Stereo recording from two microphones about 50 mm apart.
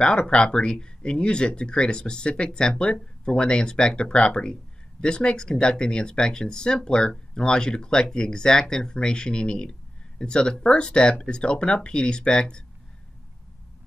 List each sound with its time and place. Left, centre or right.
0.0 s speech: centre